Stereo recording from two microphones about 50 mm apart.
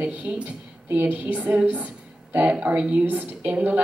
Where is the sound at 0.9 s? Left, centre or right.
Right.